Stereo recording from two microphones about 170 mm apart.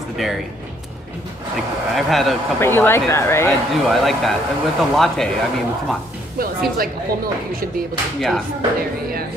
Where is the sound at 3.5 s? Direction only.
Centre (ahead or behind).